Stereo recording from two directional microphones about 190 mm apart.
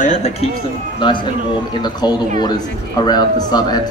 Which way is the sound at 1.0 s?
25° left (ahead or behind).